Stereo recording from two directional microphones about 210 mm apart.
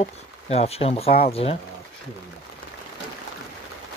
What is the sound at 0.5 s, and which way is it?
Speech, 30° left (ahead or behind).